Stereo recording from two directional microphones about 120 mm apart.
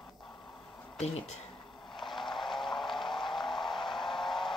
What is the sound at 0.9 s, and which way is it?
Speech, 65° left (ahead or behind).